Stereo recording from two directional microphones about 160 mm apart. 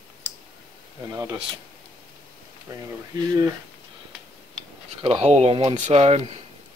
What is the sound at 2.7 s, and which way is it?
Speech, 20° right (ahead or behind).